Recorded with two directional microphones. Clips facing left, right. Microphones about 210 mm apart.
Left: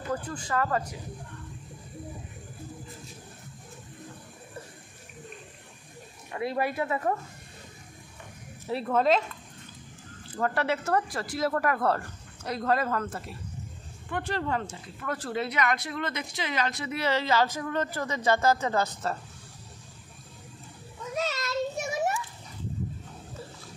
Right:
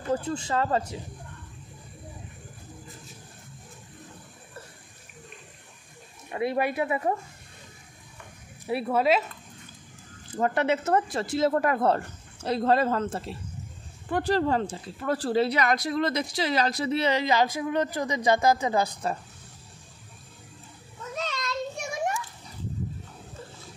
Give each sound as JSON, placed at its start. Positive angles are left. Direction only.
{"t": 0.1, "sound": "speech", "side_deg": -25}
{"t": 6.3, "sound": "speech", "side_deg": -20}
{"t": 8.6, "sound": "speech", "side_deg": -10}
{"t": 10.3, "sound": "speech", "side_deg": -20}
{"t": 17.0, "sound": "speech", "side_deg": -15}
{"t": 21.1, "sound": "children playing", "side_deg": 5}